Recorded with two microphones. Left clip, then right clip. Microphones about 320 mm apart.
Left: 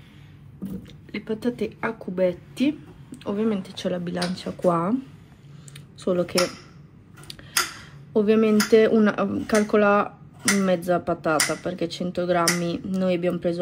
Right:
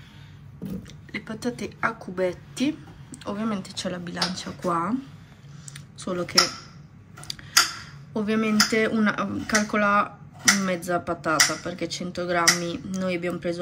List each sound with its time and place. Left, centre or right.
1.1 s speech: centre
5.9 s speech: centre
7.3 s a sound: centre
8.1 s speech: centre